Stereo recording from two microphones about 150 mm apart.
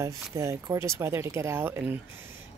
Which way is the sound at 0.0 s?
20° right (ahead or behind).